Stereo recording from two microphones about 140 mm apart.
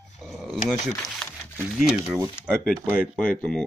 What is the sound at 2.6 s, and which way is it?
Speech, 5° left (ahead or behind).